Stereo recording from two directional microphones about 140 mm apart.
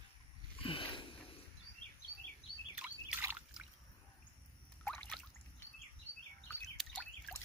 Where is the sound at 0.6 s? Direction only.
40° left (ahead or behind).